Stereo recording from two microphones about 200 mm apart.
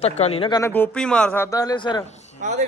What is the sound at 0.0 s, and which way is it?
Speech, 30° left (ahead or behind).